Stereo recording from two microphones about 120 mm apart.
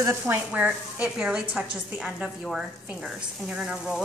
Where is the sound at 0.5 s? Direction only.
10° right (ahead or behind).